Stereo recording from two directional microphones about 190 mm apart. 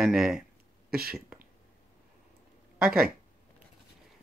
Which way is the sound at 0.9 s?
50° right (ahead or behind).